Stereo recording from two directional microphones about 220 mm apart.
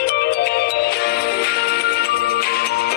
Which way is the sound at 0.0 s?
45° left (ahead or behind).